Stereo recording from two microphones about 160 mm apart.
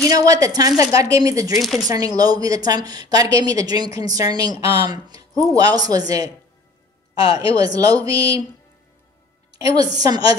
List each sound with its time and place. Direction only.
0.0 s a woman's voice: 20° right (ahead or behind)
9.5 s a woman's voice: 20° right (ahead or behind)